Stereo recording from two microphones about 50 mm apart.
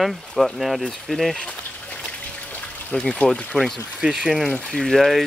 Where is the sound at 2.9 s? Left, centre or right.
Centre.